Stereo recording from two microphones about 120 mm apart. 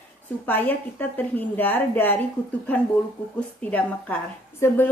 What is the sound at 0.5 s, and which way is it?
A woman's voice, 15° left (ahead or behind).